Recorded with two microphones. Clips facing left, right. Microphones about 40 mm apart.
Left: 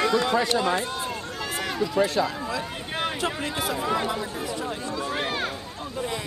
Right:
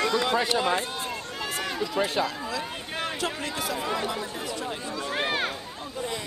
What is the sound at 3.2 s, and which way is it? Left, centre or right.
Speech, left.